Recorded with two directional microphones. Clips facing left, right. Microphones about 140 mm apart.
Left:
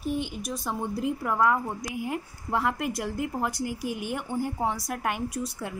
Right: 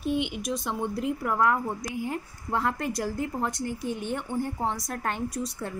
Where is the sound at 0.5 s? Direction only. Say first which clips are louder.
Right 2 dB; 5° left (ahead or behind).